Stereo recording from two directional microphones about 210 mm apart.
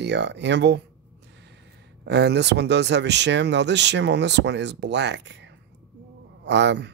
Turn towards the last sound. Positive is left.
turn(degrees=-55)  # may be behind; listen again after turning